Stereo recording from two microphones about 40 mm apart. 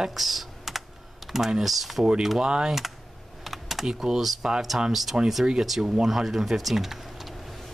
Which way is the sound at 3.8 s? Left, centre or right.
Centre.